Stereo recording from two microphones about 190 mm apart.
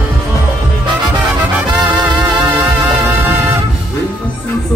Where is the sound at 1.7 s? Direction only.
25° right (ahead or behind).